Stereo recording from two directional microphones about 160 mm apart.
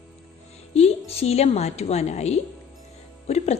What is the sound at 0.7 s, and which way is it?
A woman's voice, 40° left (ahead or behind).